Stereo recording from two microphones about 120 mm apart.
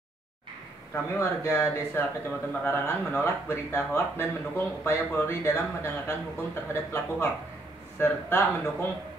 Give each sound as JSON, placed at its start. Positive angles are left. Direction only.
{"t": 0.9, "sound": "speech", "side_deg": 20}